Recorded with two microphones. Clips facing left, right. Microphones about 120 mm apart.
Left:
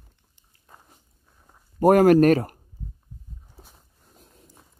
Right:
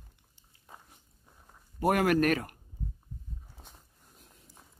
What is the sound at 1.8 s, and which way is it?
Speech, 40° left (ahead or behind).